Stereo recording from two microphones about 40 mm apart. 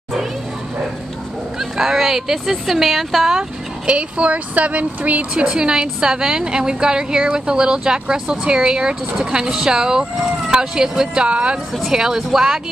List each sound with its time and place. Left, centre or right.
1.6 s speech: centre
3.3 s speech: right
5.3 s a woman's voice: right
11.2 s a woman's voice: right
11.9 s speech: centre